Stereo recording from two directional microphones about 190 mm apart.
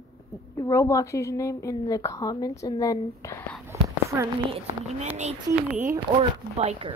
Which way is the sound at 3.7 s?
15° right (ahead or behind).